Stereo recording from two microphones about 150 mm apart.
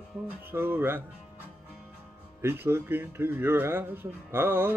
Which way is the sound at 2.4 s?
15° right (ahead or behind).